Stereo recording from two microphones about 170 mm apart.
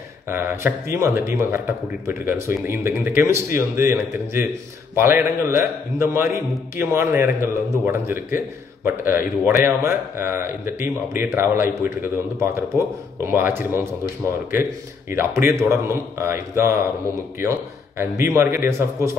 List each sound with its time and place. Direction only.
0.3 s a man's voice: 15° right (ahead or behind)